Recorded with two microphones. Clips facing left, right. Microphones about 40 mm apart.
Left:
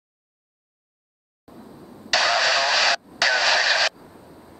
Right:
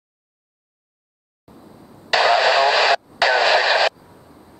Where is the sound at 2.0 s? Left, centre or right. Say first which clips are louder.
Right 5 dB; right.